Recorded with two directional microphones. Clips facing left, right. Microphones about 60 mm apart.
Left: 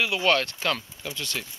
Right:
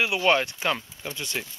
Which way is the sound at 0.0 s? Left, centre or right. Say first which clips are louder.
Right 1 dB; centre.